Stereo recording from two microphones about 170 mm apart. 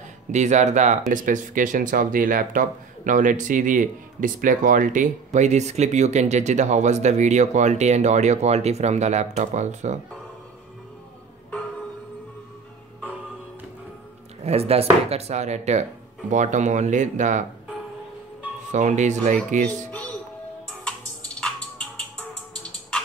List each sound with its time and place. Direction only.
0.3 s speech: 45° right (ahead or behind)
14.4 s speech: 35° right (ahead or behind)
18.7 s speech: 45° right (ahead or behind)
20.6 s music: 5° left (ahead or behind)